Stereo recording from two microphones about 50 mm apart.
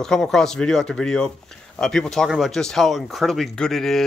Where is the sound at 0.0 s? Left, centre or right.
Centre.